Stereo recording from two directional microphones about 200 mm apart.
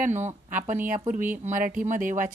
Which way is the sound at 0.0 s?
35° right (ahead or behind).